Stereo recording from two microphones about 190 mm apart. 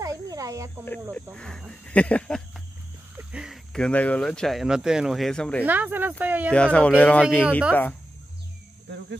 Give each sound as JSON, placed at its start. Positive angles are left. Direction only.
{"t": 0.0, "sound": "cricket", "side_deg": -15}
{"t": 1.1, "sound": "speech", "side_deg": 5}
{"t": 3.2, "sound": "speech", "side_deg": -5}
{"t": 5.7, "sound": "speech", "side_deg": -10}
{"t": 6.5, "sound": "speech", "side_deg": 5}